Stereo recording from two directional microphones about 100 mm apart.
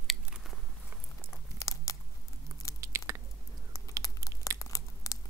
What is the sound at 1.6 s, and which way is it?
Tearing, 35° left (ahead or behind).